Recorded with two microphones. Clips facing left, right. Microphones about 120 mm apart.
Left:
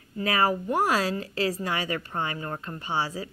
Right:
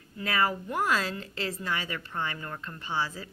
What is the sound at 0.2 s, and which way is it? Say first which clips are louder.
Speech: left 4 dB; 40° left (ahead or behind).